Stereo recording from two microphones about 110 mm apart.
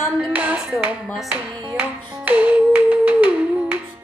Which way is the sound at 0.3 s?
15° right (ahead or behind).